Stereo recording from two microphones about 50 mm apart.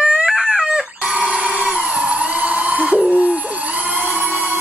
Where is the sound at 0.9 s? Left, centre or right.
Right.